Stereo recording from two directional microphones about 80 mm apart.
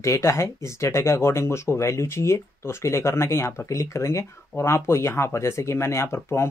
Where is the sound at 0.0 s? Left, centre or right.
Left.